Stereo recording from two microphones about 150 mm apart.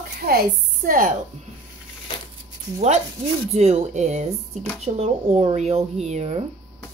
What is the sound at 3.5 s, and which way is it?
Speech, 45° right (ahead or behind).